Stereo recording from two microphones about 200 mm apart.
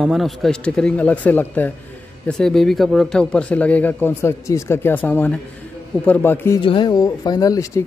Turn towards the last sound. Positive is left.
turn(degrees=20)  # may be behind; listen again after turning